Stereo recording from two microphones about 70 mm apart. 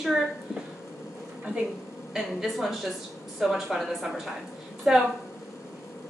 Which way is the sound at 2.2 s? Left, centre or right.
Centre.